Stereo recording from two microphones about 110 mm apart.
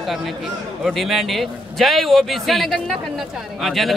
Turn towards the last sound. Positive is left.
turn(degrees=0)  # may be behind; listen again after turning